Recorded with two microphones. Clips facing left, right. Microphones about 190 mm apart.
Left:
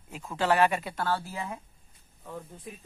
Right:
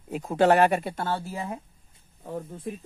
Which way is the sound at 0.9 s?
25° right (ahead or behind).